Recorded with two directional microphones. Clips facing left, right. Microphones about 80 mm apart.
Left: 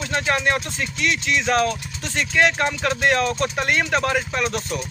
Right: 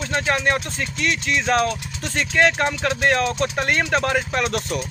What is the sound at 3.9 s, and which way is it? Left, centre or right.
Speech, right.